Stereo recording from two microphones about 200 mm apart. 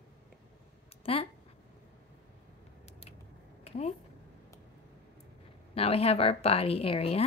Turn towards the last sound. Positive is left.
turn(degrees=30)  # may be behind; listen again after turning